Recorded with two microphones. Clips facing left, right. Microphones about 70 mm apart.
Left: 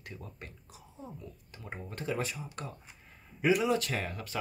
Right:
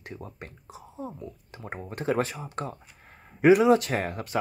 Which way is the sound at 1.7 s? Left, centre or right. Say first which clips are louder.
Right 8 dB; right.